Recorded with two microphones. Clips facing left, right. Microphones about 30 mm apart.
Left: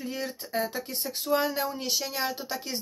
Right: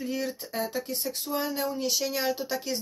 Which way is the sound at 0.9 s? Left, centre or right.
Left.